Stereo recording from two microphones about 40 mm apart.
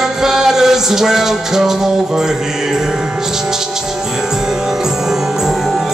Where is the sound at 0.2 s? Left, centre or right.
Centre.